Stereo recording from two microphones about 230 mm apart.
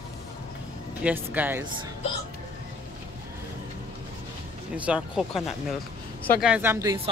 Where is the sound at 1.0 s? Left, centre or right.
Centre.